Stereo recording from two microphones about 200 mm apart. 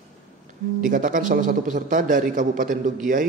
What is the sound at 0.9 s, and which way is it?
A man's voice, 40° right (ahead or behind).